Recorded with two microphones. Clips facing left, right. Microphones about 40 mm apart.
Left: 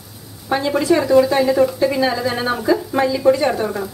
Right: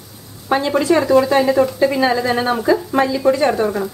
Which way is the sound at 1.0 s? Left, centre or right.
Centre.